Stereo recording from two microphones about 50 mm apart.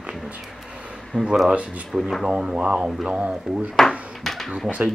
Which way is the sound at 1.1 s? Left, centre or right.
Left.